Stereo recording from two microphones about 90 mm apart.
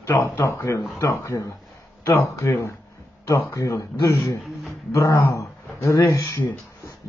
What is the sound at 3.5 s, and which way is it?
Speech, 35° left (ahead or behind).